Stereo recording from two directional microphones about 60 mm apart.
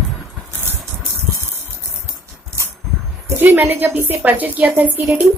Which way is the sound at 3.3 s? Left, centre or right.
Right.